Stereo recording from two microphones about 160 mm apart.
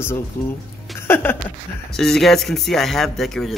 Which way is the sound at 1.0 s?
15° left (ahead or behind).